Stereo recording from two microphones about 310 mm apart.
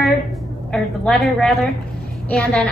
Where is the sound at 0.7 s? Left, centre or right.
Centre.